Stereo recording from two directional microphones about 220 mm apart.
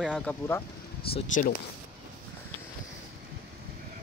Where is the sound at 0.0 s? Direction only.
Centre (ahead or behind).